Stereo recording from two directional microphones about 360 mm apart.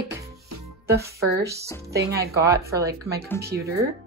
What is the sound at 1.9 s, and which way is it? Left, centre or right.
Speech, centre.